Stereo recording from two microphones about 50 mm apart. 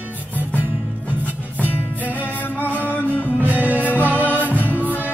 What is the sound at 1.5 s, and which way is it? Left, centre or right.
Music, right.